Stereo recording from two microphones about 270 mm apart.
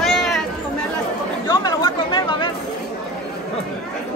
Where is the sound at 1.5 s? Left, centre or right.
Centre.